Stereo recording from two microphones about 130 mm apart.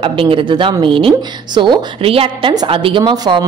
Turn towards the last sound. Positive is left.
turn(degrees=-35)  # may be behind; listen again after turning